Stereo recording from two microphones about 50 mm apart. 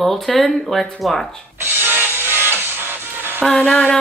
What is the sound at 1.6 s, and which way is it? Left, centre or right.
Music, right.